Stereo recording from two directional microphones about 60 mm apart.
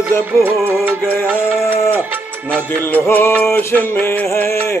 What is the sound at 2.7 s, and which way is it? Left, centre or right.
Music, left.